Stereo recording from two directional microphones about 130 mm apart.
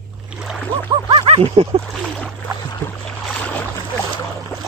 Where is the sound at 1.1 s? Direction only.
50° right (ahead or behind).